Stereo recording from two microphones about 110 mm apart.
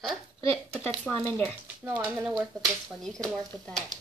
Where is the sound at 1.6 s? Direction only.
15° right (ahead or behind).